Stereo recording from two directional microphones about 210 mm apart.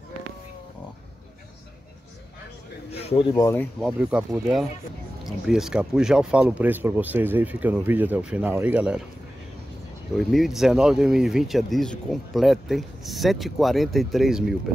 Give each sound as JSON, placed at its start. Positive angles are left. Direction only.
{"t": 2.9, "sound": "a sound", "side_deg": 30}
{"t": 3.4, "sound": "speech", "side_deg": 10}
{"t": 4.0, "sound": "speech", "side_deg": -10}
{"t": 10.1, "sound": "speech", "side_deg": 0}